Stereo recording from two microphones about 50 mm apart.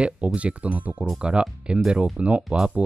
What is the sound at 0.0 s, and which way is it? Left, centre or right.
Speech, right.